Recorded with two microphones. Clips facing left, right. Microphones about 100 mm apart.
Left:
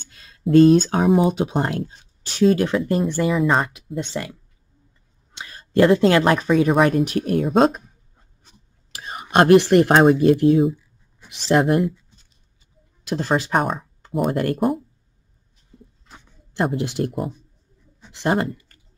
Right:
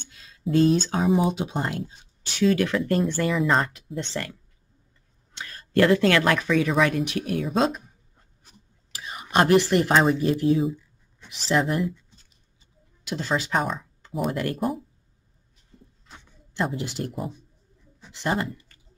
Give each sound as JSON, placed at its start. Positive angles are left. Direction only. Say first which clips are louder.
{"t": 0.1, "sound": "a sound", "louder": "left 8 dB", "side_deg": 55}
{"t": 1.3, "sound": "speech", "louder": "left 6 dB", "side_deg": 55}
{"t": 3.0, "sound": "speech", "louder": "left 4 dB", "side_deg": 10}
{"t": 8.9, "sound": "whispering", "louder": "left 4 dB", "side_deg": 45}
{"t": 9.4, "sound": "a woman's voice", "louder": "left 6 dB", "side_deg": 60}
{"t": 13.0, "sound": "speech", "louder": "left 5 dB", "side_deg": 45}
{"t": 16.5, "sound": "speech", "louder": "left 5 dB", "side_deg": 55}
{"t": 18.2, "sound": "speech", "louder": "left 5 dB", "side_deg": 50}